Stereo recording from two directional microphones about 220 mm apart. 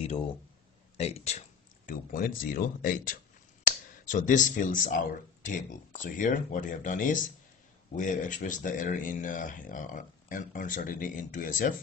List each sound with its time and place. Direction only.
0.9 s speech: 30° left (ahead or behind)
1.9 s speech: 40° left (ahead or behind)